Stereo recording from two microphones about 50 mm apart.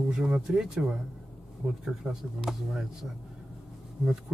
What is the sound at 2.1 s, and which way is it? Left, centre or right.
Speech, centre.